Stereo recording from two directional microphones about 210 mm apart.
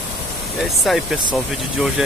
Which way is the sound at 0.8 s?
Centre (ahead or behind).